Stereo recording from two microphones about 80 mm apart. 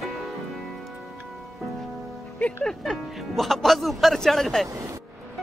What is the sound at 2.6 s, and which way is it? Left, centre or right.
Speech, centre.